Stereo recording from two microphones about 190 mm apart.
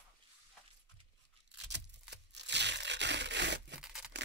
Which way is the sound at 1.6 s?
65° right (ahead or behind).